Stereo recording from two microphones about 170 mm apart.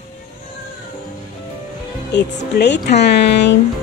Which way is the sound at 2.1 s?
85° left.